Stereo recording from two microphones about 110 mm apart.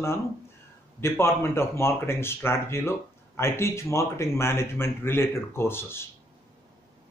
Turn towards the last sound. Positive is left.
turn(degrees=20)  # may be behind; listen again after turning